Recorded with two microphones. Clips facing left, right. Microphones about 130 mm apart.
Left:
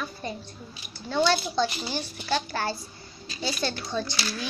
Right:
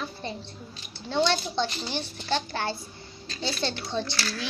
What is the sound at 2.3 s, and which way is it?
Speech, 20° right (ahead or behind).